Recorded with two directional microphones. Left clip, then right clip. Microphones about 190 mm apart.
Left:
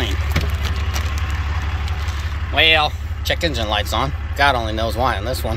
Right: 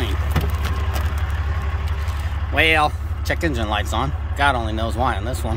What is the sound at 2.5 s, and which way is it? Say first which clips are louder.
Speech: left 2 dB; 20° right (ahead or behind).